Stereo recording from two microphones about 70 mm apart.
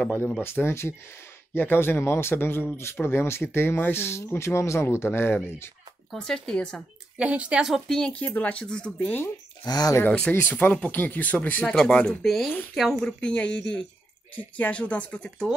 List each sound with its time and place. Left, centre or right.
0.4 s speech: left
6.1 s speech: centre
7.2 s a woman's voice: centre
8.4 s speech: centre
9.7 s speech: left
10.0 s speech: centre
11.6 s speech: centre
13.0 s speech: centre